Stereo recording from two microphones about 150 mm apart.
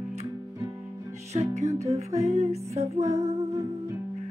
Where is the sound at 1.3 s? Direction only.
50° right (ahead or behind).